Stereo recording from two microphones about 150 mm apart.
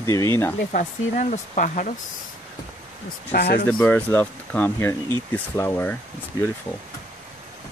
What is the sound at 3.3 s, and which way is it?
Speech, 90° left.